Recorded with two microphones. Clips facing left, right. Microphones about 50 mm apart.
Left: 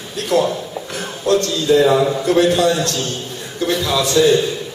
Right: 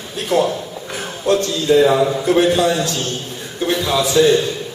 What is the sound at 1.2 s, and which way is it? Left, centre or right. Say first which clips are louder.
A man's voice: even; centre.